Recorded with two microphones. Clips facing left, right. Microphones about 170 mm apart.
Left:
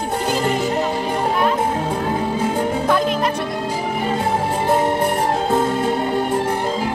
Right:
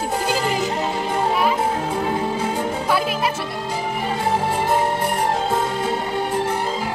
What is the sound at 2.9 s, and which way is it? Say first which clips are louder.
Music: left 3 dB; 5° right (ahead or behind).